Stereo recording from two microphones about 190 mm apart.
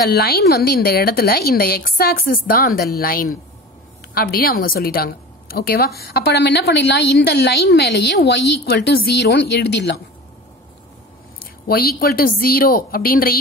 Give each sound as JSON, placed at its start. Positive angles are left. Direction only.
{"t": 0.1, "sound": "a woman's voice", "side_deg": 55}
{"t": 11.6, "sound": "a woman's voice", "side_deg": 50}